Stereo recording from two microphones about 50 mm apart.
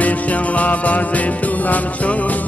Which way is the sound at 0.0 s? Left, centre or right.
Left.